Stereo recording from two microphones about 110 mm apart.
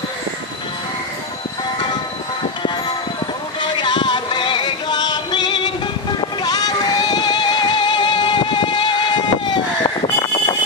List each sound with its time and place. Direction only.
3.6 s music: 45° left (ahead or behind)